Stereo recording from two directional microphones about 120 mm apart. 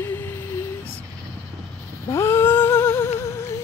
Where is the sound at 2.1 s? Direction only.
20° left (ahead or behind).